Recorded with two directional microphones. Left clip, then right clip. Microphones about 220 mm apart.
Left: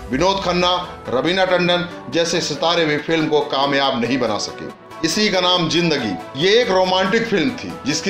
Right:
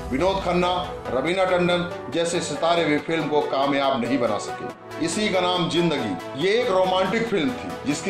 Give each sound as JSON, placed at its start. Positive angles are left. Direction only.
{"t": 0.2, "sound": "speech", "side_deg": 25}